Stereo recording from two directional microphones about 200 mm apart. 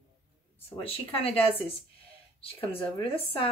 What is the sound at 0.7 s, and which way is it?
Speech, 30° left (ahead or behind).